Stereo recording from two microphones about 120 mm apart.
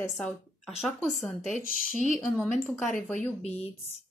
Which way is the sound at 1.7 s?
90° left.